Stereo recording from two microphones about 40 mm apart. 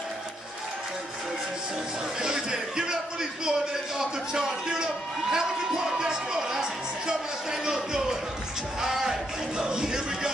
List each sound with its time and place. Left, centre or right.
2.2 s music: centre
4.0 s a man's voice: centre
7.6 s music: centre